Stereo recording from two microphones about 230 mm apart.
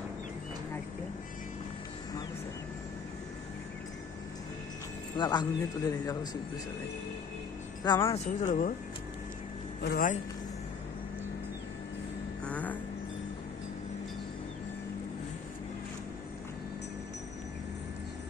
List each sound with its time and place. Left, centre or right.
5.1 s a man's voice: centre
7.8 s a man's voice: centre
8.4 s speech: left
9.8 s a man's voice: left
12.4 s vehicle: centre